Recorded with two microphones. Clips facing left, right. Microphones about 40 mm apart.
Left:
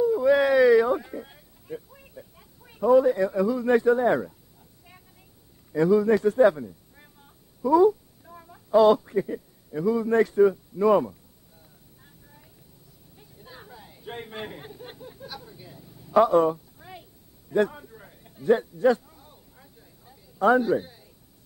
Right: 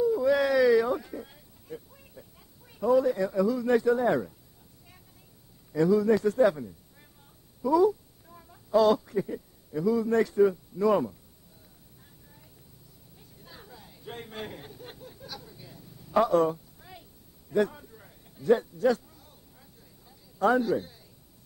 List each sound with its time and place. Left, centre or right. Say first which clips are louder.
0.0 s a sound: left 4 dB; centre
2.9 s speech: left 5 dB; centre
5.7 s a man's voice: left 3 dB; centre
7.6 s speech: left 4 dB; centre
12.0 s vehicle: left 4 dB; centre
13.2 s a sound: left 4 dB; centre